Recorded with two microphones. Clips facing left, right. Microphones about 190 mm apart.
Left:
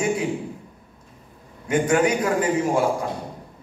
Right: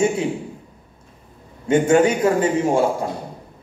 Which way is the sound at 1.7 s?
25° right (ahead or behind).